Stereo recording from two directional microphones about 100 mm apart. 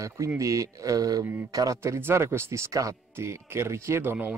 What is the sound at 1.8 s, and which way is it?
Speech, 25° right (ahead or behind).